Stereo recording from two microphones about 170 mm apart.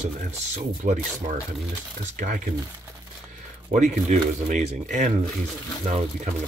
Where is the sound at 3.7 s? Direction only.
45° right (ahead or behind).